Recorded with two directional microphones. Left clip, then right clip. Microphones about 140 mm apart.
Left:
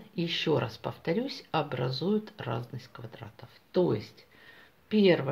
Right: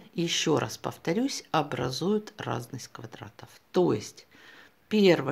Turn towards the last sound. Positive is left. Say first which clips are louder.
# right 2 dB
turn(degrees=-55)  # may be behind; listen again after turning